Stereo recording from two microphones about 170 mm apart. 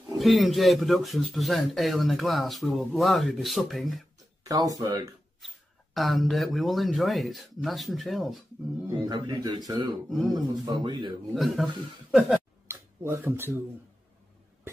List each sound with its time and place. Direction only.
0.2 s speech: centre (ahead or behind)
4.5 s a man's voice: 20° right (ahead or behind)
5.9 s speech: centre (ahead or behind)
9.0 s a man's voice: 25° right (ahead or behind)
10.0 s speech: centre (ahead or behind)
10.6 s a man's voice: 25° right (ahead or behind)
11.3 s speech: centre (ahead or behind)
12.6 s a sound: 15° right (ahead or behind)